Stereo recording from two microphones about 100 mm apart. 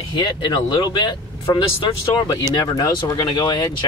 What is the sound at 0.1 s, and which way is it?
Speech, 50° left (ahead or behind).